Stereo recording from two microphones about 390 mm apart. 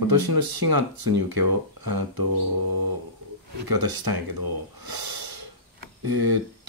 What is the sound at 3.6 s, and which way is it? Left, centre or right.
Speech, right.